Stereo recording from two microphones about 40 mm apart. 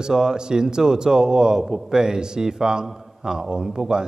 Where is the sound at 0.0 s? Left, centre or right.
Centre.